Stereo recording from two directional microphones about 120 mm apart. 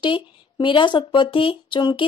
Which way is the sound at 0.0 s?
45° left (ahead or behind).